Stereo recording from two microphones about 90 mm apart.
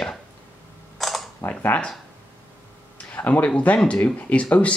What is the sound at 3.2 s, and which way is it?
Speech, 15° left (ahead or behind).